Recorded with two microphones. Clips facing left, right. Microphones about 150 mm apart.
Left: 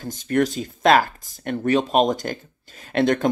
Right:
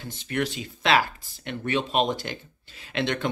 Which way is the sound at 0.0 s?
45° left (ahead or behind).